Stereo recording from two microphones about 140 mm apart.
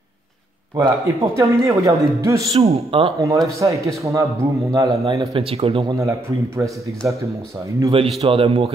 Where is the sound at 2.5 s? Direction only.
45° right (ahead or behind).